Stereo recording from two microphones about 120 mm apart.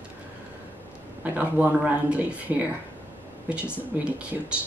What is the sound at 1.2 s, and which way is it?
Speech, 15° right (ahead or behind).